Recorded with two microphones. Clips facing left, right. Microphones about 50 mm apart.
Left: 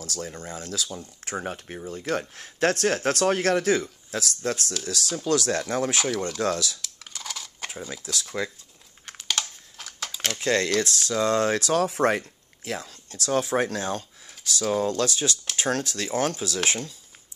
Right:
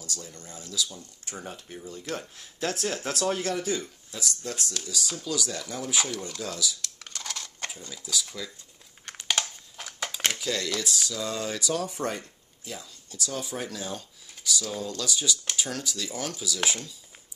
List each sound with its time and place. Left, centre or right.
0.0 s speech: left
6.2 s speech: left
6.8 s a sound: centre
7.9 s speech: left
9.3 s a sound: centre
10.4 s speech: left